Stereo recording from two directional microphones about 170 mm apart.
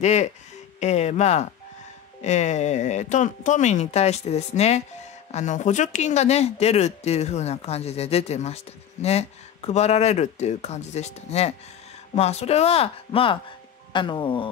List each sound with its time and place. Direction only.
0.0 s speech: 40° left (ahead or behind)